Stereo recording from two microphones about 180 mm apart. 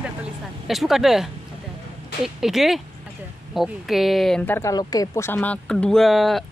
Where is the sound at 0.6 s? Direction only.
Centre (ahead or behind).